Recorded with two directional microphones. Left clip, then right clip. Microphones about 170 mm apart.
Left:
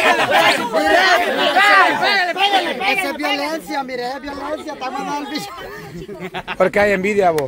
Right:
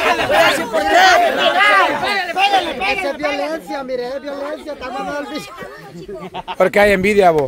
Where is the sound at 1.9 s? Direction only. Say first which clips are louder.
Left 2 dB; 30° left (ahead or behind).